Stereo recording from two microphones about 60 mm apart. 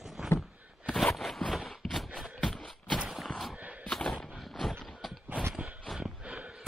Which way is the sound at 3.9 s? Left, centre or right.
Centre.